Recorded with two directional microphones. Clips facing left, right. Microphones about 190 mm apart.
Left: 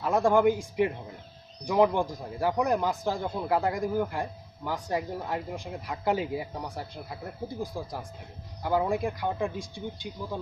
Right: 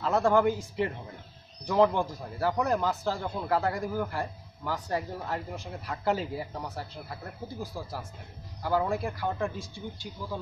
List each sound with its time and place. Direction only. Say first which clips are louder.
0.0 s speech: left 2 dB; 15° left (ahead or behind)